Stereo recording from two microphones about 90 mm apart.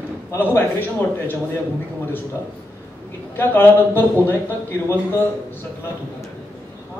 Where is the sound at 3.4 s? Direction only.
25° left (ahead or behind).